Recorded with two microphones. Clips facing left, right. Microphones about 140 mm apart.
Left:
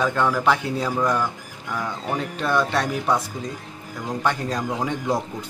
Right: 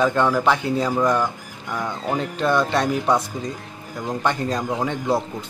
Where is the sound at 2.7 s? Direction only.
10° right (ahead or behind).